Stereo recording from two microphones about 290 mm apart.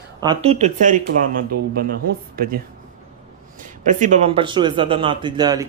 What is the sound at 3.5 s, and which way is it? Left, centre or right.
Speech, right.